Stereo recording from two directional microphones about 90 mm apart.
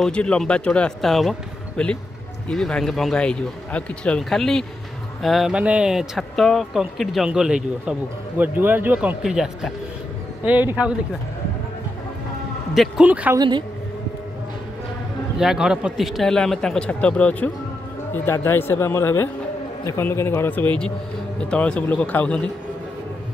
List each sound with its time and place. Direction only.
0.0 s speech: 10° left (ahead or behind)
5.5 s speech: 10° right (ahead or behind)
8.4 s speech: 20° right (ahead or behind)
9.2 s speech: 5° right (ahead or behind)
10.4 s speech: 20° right (ahead or behind)
12.7 s speech: centre (ahead or behind)
13.0 s speech: 15° right (ahead or behind)
13.4 s a woman's voice: 60° right (ahead or behind)
15.3 s speech: 5° right (ahead or behind); by 17.5 s 15° left (ahead or behind)
18.1 s speech: 30° left (ahead or behind)